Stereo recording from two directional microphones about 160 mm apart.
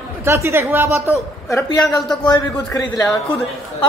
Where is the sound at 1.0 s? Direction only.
20° left (ahead or behind).